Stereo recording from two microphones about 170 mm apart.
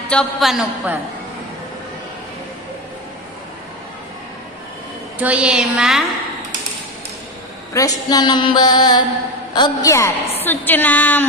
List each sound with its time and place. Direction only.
0.1 s a woman's voice: centre (ahead or behind)
5.2 s a woman's voice: 5° right (ahead or behind)
7.7 s a sound: 20° left (ahead or behind)
9.5 s a woman's voice: 25° left (ahead or behind)